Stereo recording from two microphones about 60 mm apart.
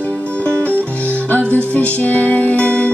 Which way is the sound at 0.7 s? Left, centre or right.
Right.